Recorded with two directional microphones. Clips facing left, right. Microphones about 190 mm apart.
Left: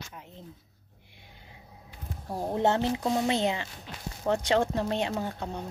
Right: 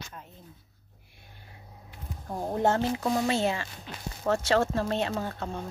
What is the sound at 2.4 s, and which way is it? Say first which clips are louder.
Speech: even; 20° left (ahead or behind).